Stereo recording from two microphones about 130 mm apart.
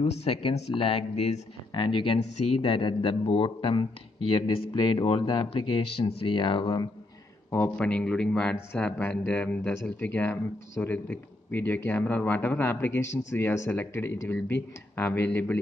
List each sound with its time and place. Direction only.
0.0 s speech: 50° left (ahead or behind)
1.7 s speech: 40° left (ahead or behind)
7.5 s speech: 10° left (ahead or behind)